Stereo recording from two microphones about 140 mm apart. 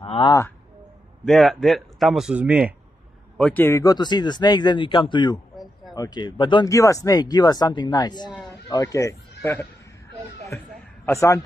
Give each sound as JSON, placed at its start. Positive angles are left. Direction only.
{"t": 0.0, "sound": "speech", "side_deg": 40}
{"t": 1.2, "sound": "a man's voice", "side_deg": 0}
{"t": 3.3, "sound": "a man's voice", "side_deg": 10}
{"t": 3.8, "sound": "speech", "side_deg": 30}
{"t": 6.7, "sound": "speech", "side_deg": 25}
{"t": 11.1, "sound": "speech", "side_deg": 20}